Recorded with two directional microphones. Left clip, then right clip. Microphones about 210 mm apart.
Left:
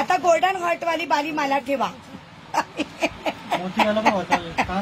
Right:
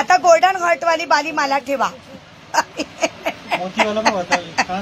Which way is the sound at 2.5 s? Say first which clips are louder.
Right 5 dB; 5° left (ahead or behind).